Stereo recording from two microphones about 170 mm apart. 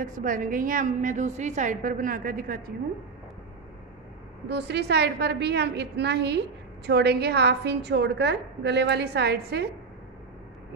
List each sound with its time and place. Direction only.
0.0 s a woman's voice: 50° right (ahead or behind)
4.5 s a woman's voice: 80° right